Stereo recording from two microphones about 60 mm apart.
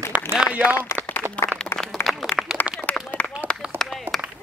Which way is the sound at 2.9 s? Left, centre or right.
Left.